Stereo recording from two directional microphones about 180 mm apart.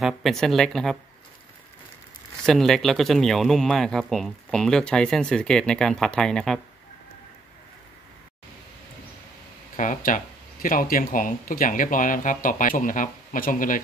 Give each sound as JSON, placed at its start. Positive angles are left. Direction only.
{"t": 0.0, "sound": "speech", "side_deg": 0}
{"t": 2.4, "sound": "speech", "side_deg": 0}
{"t": 9.8, "sound": "speech", "side_deg": 45}